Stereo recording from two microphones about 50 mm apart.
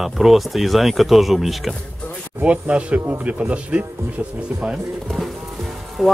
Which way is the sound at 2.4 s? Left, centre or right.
Right.